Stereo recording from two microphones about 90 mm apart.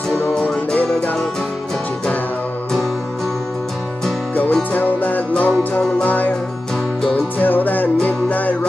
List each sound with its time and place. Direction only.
0.3 s music: 5° left (ahead or behind)
4.7 s music: 20° left (ahead or behind)
7.0 s music: 5° left (ahead or behind)
7.3 s music: 20° left (ahead or behind)